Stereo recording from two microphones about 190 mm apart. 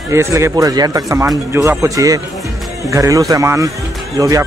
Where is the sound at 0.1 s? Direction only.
15° right (ahead or behind).